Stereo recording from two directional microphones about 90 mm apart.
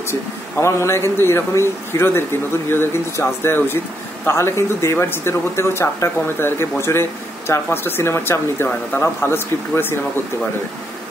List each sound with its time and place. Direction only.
0.1 s speech: 30° left (ahead or behind)